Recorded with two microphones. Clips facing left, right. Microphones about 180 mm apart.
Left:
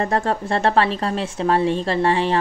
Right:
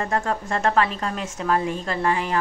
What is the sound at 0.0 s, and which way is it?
A woman's voice, 35° left (ahead or behind).